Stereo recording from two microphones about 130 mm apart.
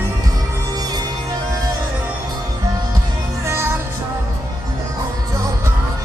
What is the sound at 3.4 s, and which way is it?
Music, 20° right (ahead or behind).